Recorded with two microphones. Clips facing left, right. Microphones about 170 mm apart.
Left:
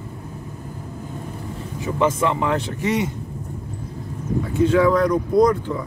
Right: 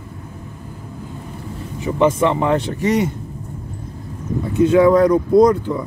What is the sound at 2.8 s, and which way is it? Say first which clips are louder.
Speech: right 4 dB; 45° right (ahead or behind).